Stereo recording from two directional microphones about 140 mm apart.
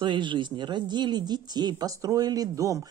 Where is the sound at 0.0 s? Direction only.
35° right (ahead or behind).